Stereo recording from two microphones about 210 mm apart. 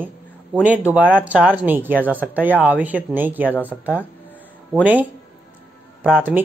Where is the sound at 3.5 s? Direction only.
10° left (ahead or behind).